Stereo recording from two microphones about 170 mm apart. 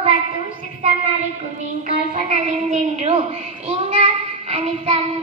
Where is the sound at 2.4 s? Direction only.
45° right (ahead or behind).